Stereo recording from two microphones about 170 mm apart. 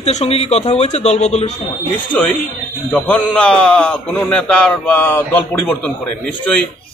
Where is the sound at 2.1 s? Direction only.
10° left (ahead or behind).